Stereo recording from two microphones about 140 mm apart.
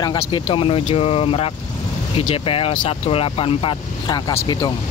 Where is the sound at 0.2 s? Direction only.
40° left (ahead or behind).